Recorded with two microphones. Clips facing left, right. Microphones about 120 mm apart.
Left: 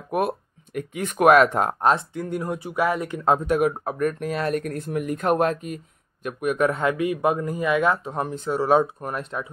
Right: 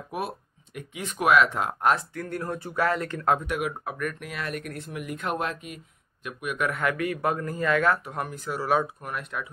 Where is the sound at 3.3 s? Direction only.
35° left (ahead or behind).